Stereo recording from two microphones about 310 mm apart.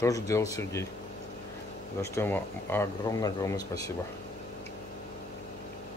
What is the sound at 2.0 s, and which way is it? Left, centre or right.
Speech, centre.